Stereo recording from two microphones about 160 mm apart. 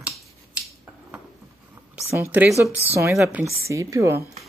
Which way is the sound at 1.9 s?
15° right (ahead or behind).